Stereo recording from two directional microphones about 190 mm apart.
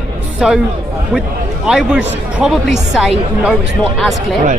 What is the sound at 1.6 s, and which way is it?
A woman's voice, 5° right (ahead or behind).